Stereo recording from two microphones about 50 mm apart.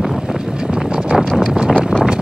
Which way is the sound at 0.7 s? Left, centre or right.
Centre.